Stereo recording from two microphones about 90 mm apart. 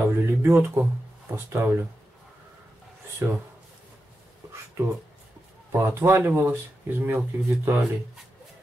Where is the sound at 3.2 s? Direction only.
25° right (ahead or behind).